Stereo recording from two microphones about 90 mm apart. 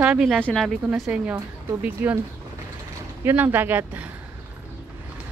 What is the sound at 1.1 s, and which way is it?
A woman's voice, 15° right (ahead or behind).